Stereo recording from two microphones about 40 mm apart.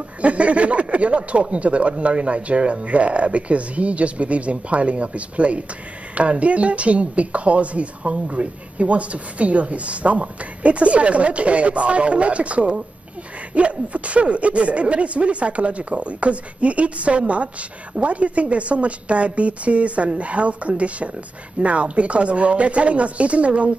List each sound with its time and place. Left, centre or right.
0.2 s speech: right